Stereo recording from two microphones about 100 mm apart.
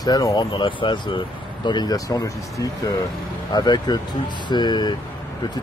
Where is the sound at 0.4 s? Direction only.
55° left (ahead or behind).